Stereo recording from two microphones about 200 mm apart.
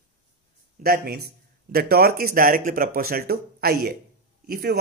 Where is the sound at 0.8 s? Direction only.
50° right (ahead or behind).